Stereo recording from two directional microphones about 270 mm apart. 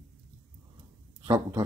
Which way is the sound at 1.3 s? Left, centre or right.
Centre.